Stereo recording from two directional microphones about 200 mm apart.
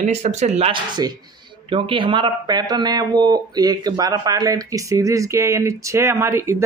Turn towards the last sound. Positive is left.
turn(degrees=-15)  # may be behind; listen again after turning